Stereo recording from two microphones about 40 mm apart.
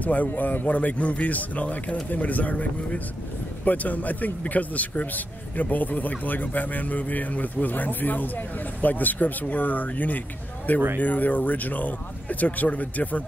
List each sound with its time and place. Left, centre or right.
0.0 s a man's voice: left